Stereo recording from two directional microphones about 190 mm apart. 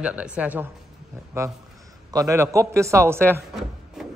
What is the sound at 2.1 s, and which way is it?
A man's voice, 15° right (ahead or behind).